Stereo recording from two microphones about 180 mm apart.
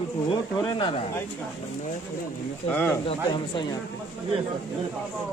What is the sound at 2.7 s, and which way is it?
Speech, 5° left (ahead or behind).